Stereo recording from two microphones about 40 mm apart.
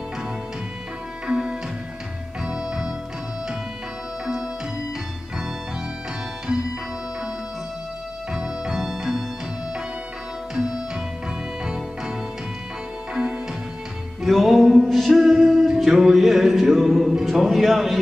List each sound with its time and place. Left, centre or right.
1.2 s music: right
8.3 s music: centre
8.8 s music: centre
10.5 s music: centre
14.2 s music: centre
17.3 s speech: centre